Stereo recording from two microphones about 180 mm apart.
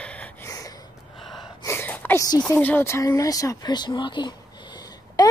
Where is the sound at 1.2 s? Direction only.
Centre (ahead or behind).